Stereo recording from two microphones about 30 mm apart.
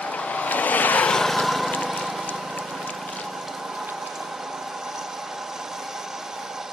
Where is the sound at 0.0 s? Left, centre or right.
Left.